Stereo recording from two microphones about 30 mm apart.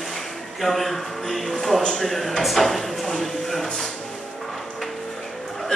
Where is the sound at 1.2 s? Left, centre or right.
Centre.